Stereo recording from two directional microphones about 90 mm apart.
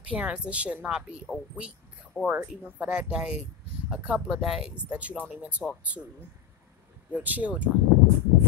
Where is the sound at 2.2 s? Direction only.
20° right (ahead or behind).